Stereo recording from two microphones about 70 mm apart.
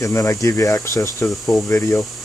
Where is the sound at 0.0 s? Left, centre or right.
Left.